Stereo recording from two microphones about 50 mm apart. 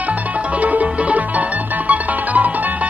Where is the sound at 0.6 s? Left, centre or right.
Right.